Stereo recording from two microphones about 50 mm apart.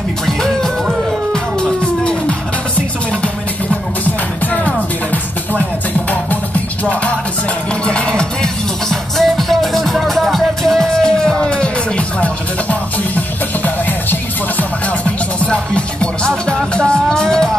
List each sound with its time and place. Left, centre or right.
0.3 s music: centre
4.0 s music: left
6.8 s music: left
12.2 s music: left
15.4 s music: left